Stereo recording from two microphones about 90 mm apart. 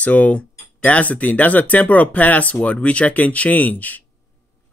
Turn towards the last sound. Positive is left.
turn(degrees=20)  # may be behind; listen again after turning